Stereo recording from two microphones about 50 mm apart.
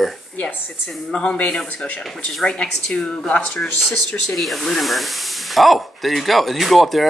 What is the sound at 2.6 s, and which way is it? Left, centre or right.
Speech, centre.